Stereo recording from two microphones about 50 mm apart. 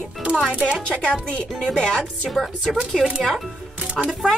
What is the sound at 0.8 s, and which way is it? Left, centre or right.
A woman's voice, left.